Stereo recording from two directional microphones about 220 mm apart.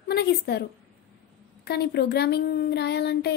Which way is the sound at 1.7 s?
45° left (ahead or behind).